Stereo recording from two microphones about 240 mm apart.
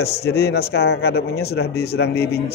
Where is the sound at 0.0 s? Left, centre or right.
Left.